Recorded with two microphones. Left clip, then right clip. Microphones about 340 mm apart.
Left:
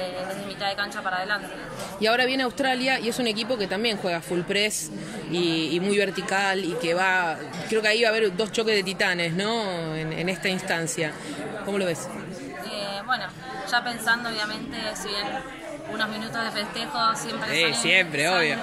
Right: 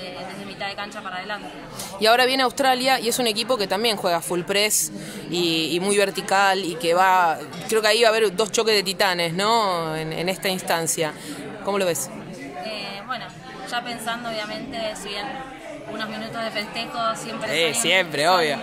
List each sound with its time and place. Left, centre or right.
0.6 s a woman's voice: centre
2.0 s speech: right
13.7 s a woman's voice: centre
17.5 s speech: centre